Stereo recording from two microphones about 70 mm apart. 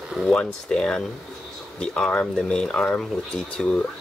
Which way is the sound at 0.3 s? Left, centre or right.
Centre.